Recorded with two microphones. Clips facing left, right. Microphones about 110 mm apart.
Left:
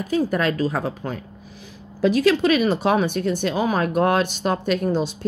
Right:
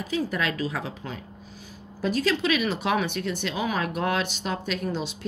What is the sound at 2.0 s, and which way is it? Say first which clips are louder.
Speech: left 8 dB; 75° left (ahead or behind).